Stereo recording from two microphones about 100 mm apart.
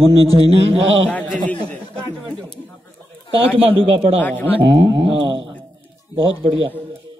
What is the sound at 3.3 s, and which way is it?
Speech, 65° right (ahead or behind).